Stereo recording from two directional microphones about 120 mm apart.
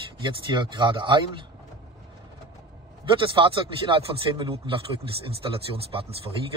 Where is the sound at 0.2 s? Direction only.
40° right (ahead or behind).